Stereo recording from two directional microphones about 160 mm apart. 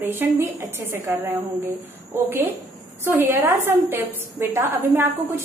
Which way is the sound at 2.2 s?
10° right (ahead or behind).